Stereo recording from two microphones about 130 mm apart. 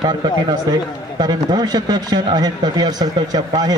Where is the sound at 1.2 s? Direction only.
30° right (ahead or behind).